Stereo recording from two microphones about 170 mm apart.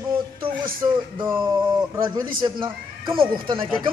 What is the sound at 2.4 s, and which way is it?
Speech, 30° right (ahead or behind).